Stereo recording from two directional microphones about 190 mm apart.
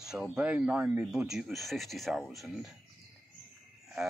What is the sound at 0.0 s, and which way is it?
Speech, 5° right (ahead or behind).